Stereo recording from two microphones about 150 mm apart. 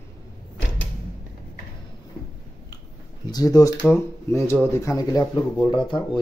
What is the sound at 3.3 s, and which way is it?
Speech, 25° left (ahead or behind).